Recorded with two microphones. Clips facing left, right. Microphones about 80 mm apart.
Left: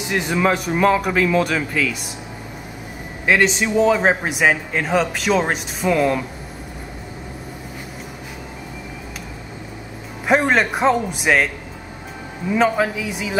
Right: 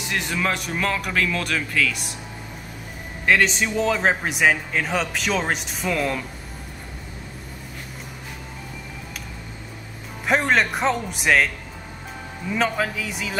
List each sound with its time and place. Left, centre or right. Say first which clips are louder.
0.0 s a man's voice: left 6 dB; centre
3.3 s a man's voice: left 2 dB; centre
10.2 s a man's voice: left 3 dB; centre